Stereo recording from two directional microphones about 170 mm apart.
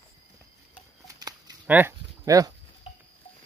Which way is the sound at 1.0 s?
20° right (ahead or behind).